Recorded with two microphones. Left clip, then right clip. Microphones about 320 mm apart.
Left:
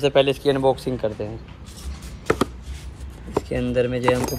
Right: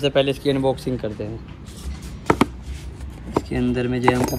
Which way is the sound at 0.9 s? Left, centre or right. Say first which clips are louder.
Even; left.